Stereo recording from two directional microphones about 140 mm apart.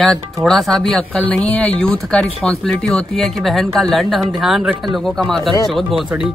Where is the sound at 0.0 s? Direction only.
5° left (ahead or behind).